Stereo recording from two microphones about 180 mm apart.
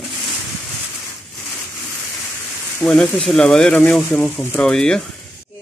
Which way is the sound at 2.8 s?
5° left (ahead or behind).